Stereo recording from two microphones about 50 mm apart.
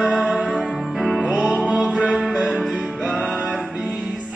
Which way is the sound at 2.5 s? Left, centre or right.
Centre.